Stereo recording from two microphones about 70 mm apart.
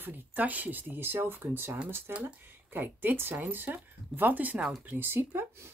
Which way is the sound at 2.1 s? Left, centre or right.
Centre.